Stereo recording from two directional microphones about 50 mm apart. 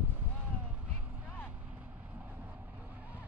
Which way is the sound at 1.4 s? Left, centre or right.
Right.